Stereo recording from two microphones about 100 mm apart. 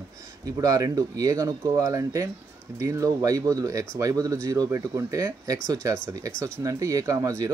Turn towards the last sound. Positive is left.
turn(degrees=-35)  # may be behind; listen again after turning